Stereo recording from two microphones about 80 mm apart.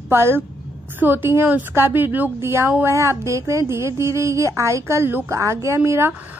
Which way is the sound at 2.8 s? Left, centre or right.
Right.